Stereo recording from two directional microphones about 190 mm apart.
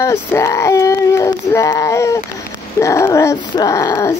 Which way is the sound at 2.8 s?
15° left (ahead or behind).